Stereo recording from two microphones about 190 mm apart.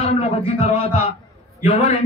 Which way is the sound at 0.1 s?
35° left (ahead or behind).